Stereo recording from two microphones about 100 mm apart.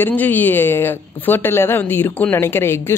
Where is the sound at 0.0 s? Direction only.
20° left (ahead or behind).